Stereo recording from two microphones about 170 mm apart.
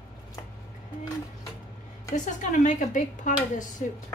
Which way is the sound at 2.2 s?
45° left (ahead or behind).